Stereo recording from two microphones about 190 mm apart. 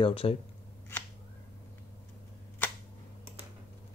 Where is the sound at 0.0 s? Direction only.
30° left (ahead or behind).